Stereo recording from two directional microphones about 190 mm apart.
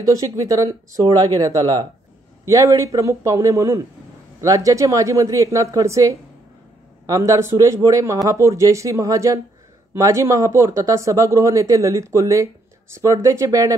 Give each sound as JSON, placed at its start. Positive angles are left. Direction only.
{"t": 0.0, "sound": "speech", "side_deg": -15}